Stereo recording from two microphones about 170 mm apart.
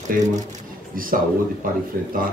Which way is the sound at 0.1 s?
55° right (ahead or behind).